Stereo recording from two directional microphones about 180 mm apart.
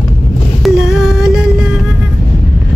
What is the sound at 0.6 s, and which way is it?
Music, 5° right (ahead or behind).